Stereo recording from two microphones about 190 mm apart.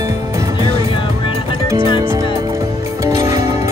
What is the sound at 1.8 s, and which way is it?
Music, 25° left (ahead or behind).